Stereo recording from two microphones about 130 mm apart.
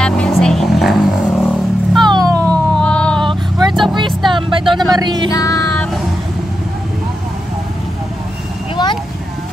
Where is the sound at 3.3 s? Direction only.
35° right (ahead or behind).